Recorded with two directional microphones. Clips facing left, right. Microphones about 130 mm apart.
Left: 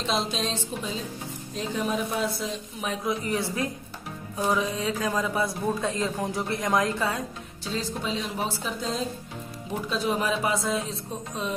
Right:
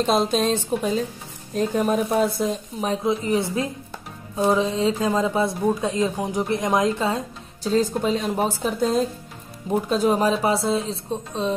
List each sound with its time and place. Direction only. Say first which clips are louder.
0.0 s speech: right 8 dB; 50° right (ahead or behind)
2.8 s a woman's voice: right 6 dB; 30° right (ahead or behind)
7.6 s speech: right 10 dB; 45° right (ahead or behind)